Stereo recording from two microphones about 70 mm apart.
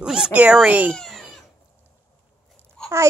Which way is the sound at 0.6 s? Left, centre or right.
Right.